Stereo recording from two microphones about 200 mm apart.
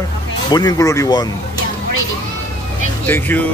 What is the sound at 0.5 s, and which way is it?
Speech, 20° left (ahead or behind).